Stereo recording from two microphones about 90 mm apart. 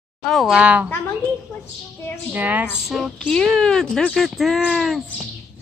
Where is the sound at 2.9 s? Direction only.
5° left (ahead or behind).